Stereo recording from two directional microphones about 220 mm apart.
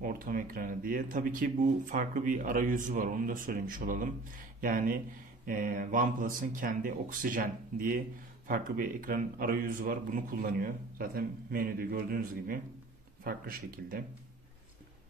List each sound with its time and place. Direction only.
0.0 s speech: 40° right (ahead or behind)